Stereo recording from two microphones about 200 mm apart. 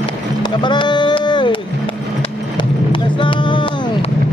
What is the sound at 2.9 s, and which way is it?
Vehicle, 25° left (ahead or behind).